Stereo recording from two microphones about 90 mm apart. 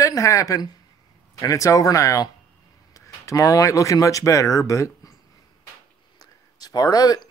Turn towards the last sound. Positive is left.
turn(degrees=45)  # may be behind; listen again after turning